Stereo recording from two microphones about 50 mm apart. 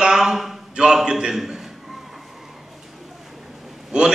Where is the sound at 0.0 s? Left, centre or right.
Centre.